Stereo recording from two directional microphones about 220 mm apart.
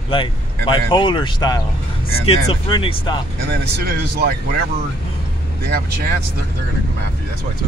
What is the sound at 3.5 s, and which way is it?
Speech, 45° right (ahead or behind).